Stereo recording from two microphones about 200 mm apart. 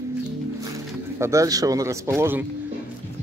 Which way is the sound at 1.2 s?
15° right (ahead or behind).